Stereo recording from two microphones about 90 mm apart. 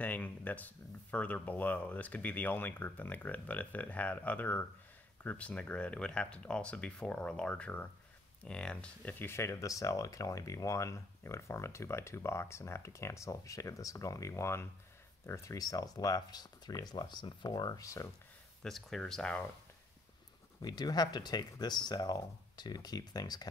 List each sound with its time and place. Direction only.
0.0 s speech: 20° left (ahead or behind)
9.2 s speech: 30° left (ahead or behind)
18.6 s speech: 5° left (ahead or behind)
20.6 s speech: 50° left (ahead or behind)